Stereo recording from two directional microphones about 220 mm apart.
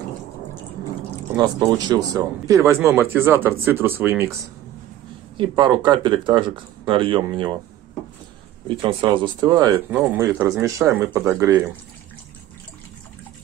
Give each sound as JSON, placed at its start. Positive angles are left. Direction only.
{"t": 1.3, "sound": "speech", "side_deg": -15}
{"t": 5.4, "sound": "speech", "side_deg": -20}
{"t": 8.6, "sound": "speech", "side_deg": -25}